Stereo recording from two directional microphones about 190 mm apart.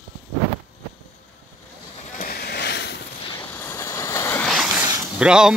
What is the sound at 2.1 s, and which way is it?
Vehicle, 55° left (ahead or behind).